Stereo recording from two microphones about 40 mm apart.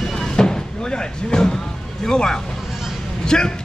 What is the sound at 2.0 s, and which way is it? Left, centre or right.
Speech, centre.